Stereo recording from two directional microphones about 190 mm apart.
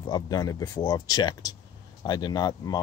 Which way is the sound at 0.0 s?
20° left (ahead or behind).